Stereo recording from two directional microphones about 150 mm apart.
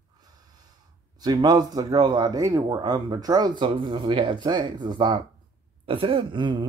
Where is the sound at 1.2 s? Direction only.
25° right (ahead or behind).